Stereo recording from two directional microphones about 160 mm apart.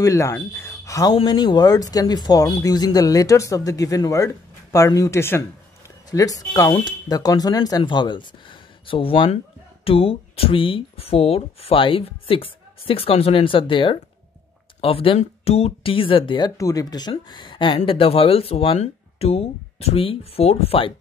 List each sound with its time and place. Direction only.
0.0 s speech: 20° left (ahead or behind); by 20.9 s 35° left (ahead or behind)